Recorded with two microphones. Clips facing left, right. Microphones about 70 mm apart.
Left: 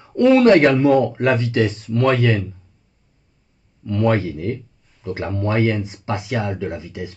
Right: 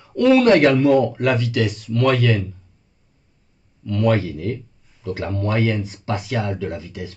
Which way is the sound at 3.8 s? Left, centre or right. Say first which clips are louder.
Left 1 dB; left.